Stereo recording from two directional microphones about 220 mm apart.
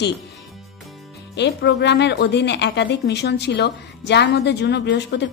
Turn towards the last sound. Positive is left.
turn(degrees=50)  # may be behind; listen again after turning